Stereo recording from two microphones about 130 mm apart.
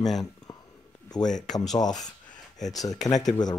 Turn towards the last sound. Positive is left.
turn(degrees=30)  # may be behind; listen again after turning